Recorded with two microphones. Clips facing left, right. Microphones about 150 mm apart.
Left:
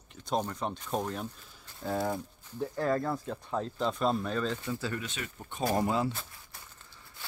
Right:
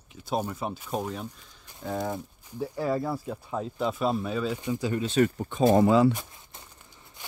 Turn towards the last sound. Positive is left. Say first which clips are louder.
# right 2 dB
turn(degrees=-15)  # may be behind; listen again after turning